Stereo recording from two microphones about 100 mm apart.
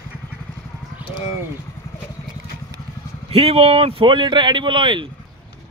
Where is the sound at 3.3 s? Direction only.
75° right (ahead or behind); by 5.1 s 55° right (ahead or behind).